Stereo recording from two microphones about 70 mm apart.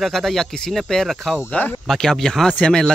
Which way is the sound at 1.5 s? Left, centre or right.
Left.